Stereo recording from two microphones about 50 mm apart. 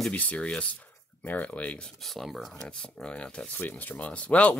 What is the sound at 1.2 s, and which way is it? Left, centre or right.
Speech, left.